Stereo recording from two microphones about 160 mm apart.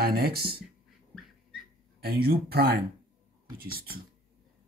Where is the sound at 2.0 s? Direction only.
75° right (ahead or behind).